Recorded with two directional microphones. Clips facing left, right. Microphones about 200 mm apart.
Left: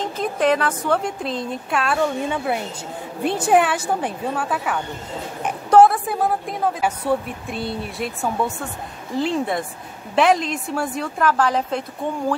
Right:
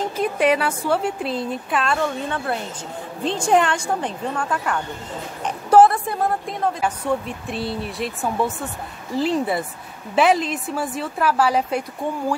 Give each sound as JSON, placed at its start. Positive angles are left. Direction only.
{"t": 0.2, "sound": "a woman's voice", "side_deg": -10}
{"t": 2.2, "sound": "a woman's voice", "side_deg": 10}